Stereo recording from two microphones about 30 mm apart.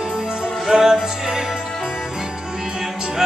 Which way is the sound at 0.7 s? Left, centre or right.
Right.